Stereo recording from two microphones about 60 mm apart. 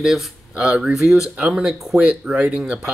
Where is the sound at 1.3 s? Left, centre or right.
Centre.